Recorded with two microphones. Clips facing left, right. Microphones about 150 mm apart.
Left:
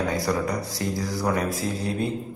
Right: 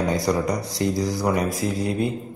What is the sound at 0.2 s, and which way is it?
Speech, 15° right (ahead or behind).